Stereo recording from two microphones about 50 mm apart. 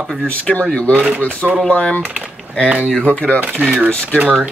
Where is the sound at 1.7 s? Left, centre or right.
Left.